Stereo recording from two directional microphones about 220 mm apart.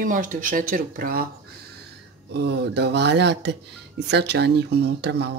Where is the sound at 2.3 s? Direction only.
50° right (ahead or behind).